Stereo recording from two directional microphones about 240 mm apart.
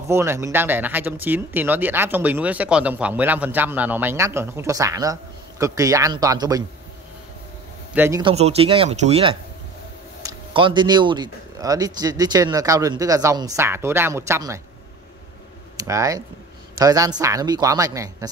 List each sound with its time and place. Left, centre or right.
0.1 s speech: centre
7.9 s speech: centre
8.2 s speech: right
15.9 s speech: centre